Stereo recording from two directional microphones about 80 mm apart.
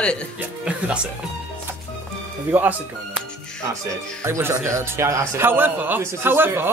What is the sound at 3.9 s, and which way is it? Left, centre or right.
Speech, right.